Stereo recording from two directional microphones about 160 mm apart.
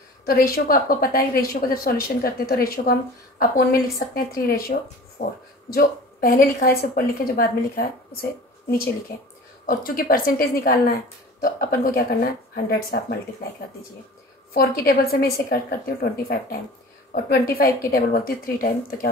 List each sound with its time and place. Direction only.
0.2 s a woman's voice: 65° left (ahead or behind)
9.7 s speech: 65° left (ahead or behind)
14.5 s a woman's voice: 65° left (ahead or behind)